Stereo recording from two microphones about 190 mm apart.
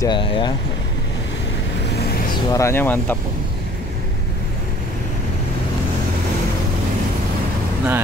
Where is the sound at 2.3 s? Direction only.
15° left (ahead or behind).